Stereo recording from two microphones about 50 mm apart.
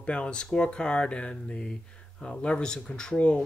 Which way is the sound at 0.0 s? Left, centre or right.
Left.